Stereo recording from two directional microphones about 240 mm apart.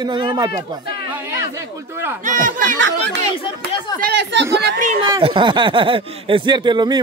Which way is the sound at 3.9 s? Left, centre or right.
Right.